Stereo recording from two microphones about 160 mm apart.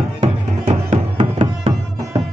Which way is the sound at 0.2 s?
45° right (ahead or behind).